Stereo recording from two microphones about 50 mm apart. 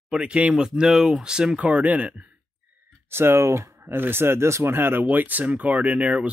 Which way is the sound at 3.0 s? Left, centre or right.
Right.